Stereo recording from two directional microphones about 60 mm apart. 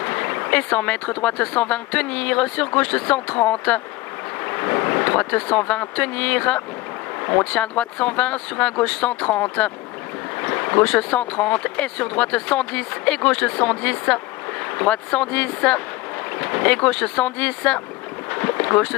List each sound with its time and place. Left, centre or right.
0.0 s speech: left
7.2 s a sound: left
7.5 s speech: centre
18.3 s boat: left